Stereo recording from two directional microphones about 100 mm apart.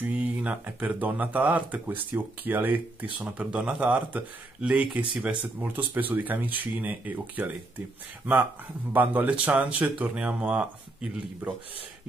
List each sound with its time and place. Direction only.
0.0 s speech: 15° right (ahead or behind)
4.9 s speech: 55° right (ahead or behind)
5.6 s speech: 15° right (ahead or behind)
8.9 s speech: 20° right (ahead or behind)